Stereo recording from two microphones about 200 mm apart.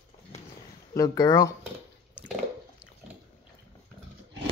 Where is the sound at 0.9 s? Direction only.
20° left (ahead or behind).